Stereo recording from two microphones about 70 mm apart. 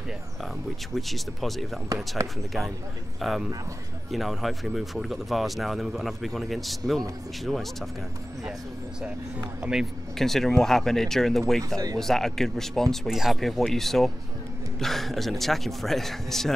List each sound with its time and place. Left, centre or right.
0.9 s speech: centre
1.9 s speech: right
3.2 s speech: centre
9.6 s speech: centre
10.1 s speech: centre